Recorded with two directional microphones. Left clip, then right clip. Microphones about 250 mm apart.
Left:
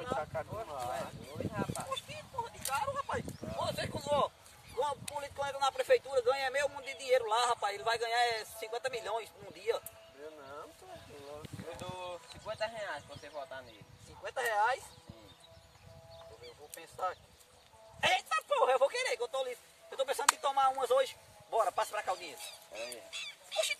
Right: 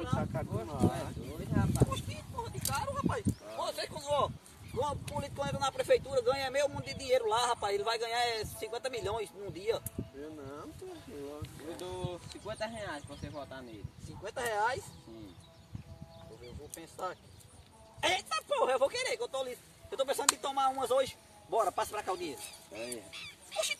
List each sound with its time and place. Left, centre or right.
0.2 s speech: centre
2.4 s a sound: centre
5.1 s a man's voice: centre
11.7 s speech: centre
14.2 s a man's voice: centre
16.7 s a man's voice: centre
22.4 s speech: left